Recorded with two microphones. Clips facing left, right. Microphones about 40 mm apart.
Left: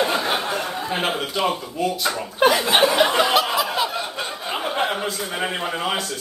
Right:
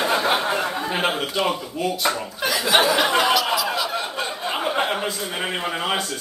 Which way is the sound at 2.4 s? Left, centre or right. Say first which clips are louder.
Left 3 dB; left.